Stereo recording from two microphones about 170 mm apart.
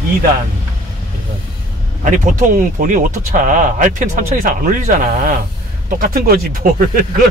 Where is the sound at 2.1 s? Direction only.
50° right (ahead or behind).